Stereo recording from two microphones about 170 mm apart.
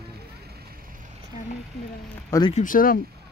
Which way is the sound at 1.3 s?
45° left (ahead or behind).